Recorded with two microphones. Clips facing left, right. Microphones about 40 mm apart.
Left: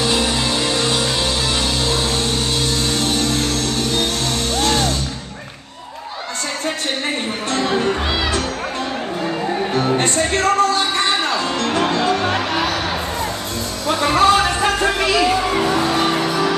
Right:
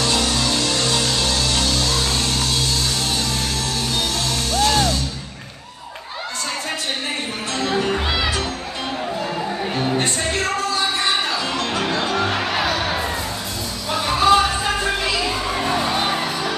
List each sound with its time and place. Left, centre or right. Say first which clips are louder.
0.0 s music: left 2 dB; left
9.8 s music: left 4 dB; left
14.0 s a sound: left 1 dB; left